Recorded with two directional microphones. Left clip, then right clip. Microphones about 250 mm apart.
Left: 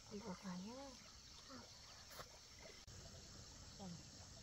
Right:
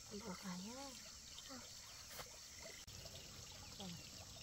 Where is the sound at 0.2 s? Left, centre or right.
Centre.